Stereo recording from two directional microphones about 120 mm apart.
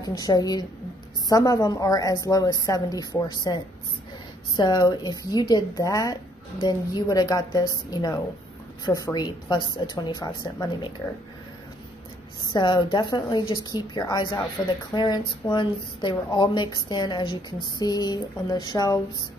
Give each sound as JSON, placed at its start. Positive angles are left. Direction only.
{"t": 0.0, "sound": "a woman's voice", "side_deg": 30}
{"t": 12.4, "sound": "a woman's voice", "side_deg": 40}